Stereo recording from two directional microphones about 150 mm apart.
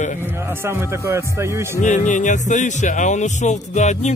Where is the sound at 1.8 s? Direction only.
55° left (ahead or behind).